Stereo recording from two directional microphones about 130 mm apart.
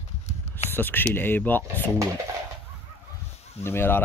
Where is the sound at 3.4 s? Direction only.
55° left (ahead or behind).